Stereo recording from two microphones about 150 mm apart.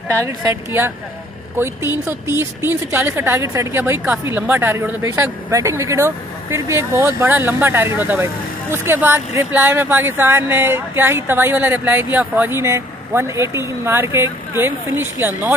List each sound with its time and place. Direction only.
0.1 s a woman's voice: 20° right (ahead or behind)
2.0 s speech: 15° right (ahead or behind)